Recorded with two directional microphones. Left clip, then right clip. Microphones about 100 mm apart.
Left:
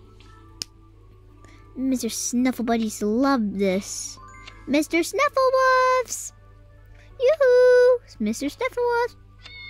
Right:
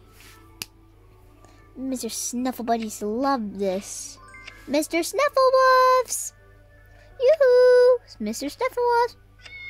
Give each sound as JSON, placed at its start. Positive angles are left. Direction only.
{"t": 1.4, "sound": "a woman's voice", "side_deg": 35}
{"t": 4.2, "sound": "speech", "side_deg": 20}
{"t": 7.2, "sound": "a sound", "side_deg": 25}